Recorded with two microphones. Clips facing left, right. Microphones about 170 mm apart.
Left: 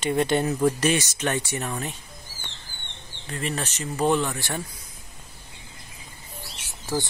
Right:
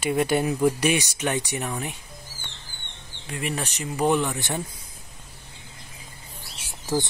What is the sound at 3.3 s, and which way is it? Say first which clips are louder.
Speech: even; 15° right (ahead or behind).